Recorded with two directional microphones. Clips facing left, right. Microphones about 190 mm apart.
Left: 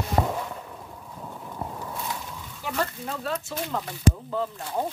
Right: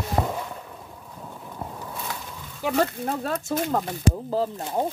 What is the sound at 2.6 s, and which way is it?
Speech, 65° right (ahead or behind).